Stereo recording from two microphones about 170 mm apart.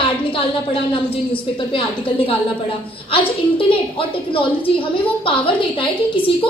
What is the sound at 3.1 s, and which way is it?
A woman's voice, 30° left (ahead or behind).